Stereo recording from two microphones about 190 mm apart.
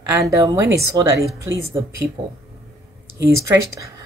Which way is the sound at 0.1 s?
15° right (ahead or behind).